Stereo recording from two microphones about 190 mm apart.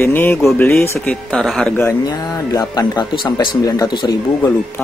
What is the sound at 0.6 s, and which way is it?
Speech, 15° left (ahead or behind).